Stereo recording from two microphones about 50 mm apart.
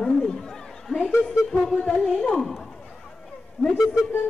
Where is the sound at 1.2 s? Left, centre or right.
Centre.